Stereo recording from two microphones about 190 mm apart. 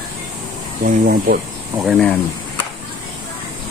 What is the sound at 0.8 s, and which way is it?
Speech, 50° right (ahead or behind).